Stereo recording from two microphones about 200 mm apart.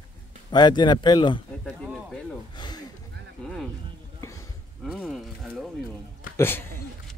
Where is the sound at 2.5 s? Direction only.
20° left (ahead or behind).